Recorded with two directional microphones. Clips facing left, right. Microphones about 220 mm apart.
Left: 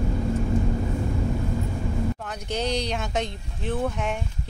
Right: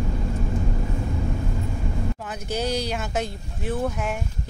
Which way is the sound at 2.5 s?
5° right (ahead or behind).